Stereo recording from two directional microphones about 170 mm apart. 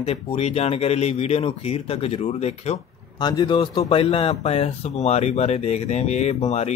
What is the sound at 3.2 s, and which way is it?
A man's voice, 25° left (ahead or behind).